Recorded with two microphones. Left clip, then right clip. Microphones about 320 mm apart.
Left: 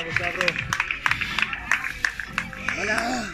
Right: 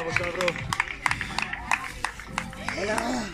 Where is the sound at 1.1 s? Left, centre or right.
Centre.